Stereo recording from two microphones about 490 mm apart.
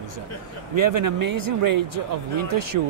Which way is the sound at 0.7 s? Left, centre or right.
Right.